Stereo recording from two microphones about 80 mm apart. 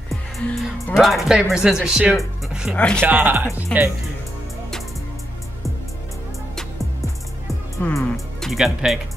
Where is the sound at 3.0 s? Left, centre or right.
Right.